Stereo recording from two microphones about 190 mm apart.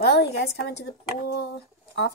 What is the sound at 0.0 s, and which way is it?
Speech, 60° left (ahead or behind).